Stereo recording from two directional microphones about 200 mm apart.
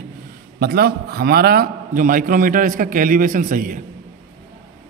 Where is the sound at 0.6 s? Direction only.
50° right (ahead or behind).